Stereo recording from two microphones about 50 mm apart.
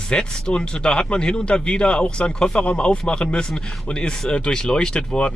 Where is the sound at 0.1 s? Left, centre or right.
Centre.